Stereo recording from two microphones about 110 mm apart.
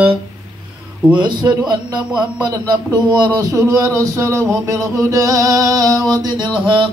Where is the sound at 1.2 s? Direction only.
40° right (ahead or behind).